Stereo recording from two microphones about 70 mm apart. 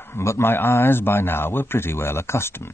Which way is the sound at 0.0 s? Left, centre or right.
Left.